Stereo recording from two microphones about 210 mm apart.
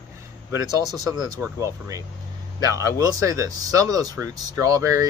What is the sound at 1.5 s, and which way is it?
Speech, 15° right (ahead or behind).